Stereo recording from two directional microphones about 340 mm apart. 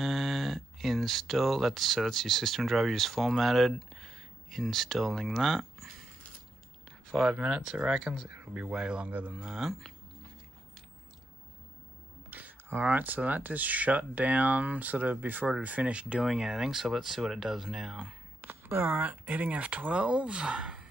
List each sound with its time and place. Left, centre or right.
0.0 s speech: centre
7.1 s speech: centre
12.3 s speech: centre